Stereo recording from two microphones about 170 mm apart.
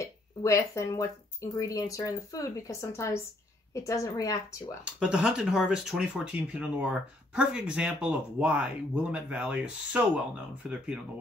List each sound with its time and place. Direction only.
0.0 s speech: 20° left (ahead or behind)
4.8 s speech: 5° right (ahead or behind)